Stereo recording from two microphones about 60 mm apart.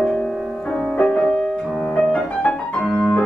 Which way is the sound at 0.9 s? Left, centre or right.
Centre.